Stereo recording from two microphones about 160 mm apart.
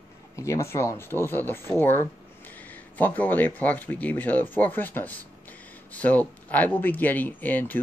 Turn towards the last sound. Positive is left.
turn(degrees=10)  # may be behind; listen again after turning